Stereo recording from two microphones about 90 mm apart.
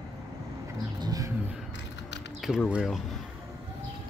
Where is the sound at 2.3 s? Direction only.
5° right (ahead or behind).